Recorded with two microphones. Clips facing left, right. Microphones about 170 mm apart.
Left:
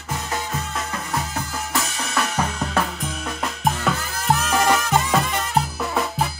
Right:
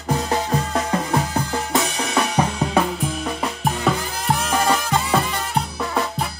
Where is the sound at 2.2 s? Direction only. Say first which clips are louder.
Right 4 dB; 10° right (ahead or behind).